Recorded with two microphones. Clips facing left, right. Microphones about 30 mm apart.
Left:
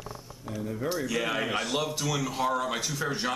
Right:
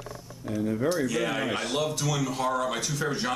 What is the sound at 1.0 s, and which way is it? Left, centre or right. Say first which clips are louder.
Speech: right 1 dB; centre.